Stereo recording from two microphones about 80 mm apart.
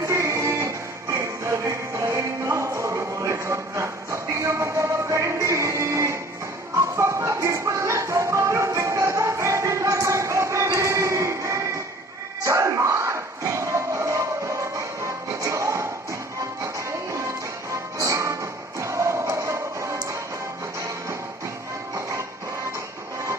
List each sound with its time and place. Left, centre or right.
0.0 s music: right